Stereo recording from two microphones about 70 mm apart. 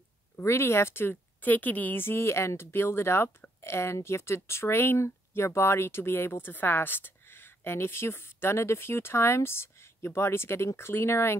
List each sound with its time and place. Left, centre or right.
0.4 s a woman's voice: left